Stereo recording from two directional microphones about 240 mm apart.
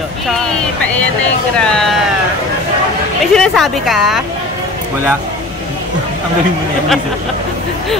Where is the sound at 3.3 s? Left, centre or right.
Centre.